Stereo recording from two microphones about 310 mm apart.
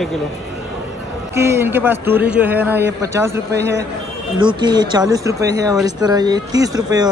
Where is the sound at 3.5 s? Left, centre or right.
Right.